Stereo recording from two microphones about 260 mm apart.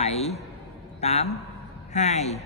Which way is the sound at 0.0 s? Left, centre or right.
Left.